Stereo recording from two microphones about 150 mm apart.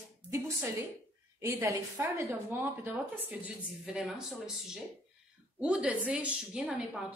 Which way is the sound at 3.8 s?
5° right (ahead or behind).